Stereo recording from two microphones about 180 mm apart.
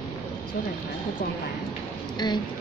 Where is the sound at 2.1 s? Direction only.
25° left (ahead or behind).